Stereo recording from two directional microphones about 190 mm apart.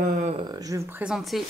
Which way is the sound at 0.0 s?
40° right (ahead or behind).